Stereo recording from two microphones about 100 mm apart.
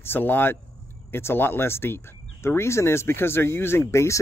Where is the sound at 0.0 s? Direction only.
20° left (ahead or behind).